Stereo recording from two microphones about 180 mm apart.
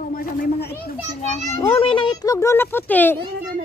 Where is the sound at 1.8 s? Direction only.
30° left (ahead or behind); by 3.1 s 10° left (ahead or behind).